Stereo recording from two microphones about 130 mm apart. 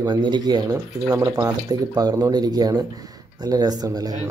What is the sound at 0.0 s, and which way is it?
Speech, 35° right (ahead or behind).